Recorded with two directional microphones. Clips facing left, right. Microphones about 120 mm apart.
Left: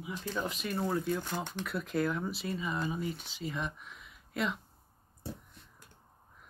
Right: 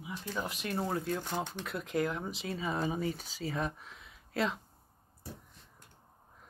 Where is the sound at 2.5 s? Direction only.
35° right (ahead or behind).